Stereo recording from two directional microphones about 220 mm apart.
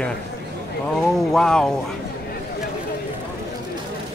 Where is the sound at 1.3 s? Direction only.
5° left (ahead or behind).